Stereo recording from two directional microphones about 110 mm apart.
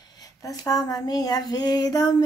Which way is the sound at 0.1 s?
35° left (ahead or behind).